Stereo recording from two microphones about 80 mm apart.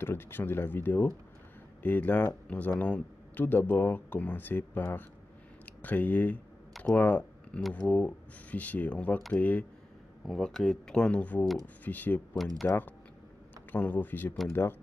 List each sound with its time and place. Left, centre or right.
0.0 s speech: left
10.2 s speech: centre; by 14.8 s left